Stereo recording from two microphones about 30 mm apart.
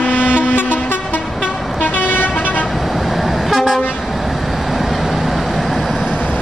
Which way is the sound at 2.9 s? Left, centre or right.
Centre.